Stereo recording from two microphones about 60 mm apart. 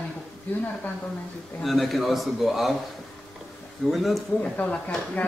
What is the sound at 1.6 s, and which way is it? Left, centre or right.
A man's voice, centre.